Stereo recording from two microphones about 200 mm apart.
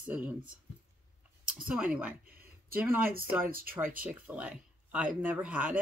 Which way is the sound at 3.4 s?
45° right (ahead or behind).